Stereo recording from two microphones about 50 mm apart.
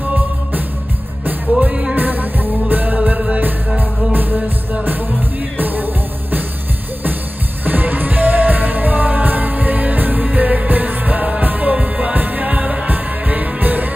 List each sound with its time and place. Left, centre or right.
1.6 s music: right
2.0 s music: right
5.6 s music: right
7.6 s music: right